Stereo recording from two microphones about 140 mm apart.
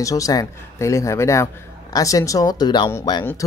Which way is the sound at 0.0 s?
25° left (ahead or behind).